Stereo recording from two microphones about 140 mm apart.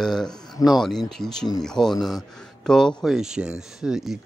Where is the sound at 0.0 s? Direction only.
5° left (ahead or behind).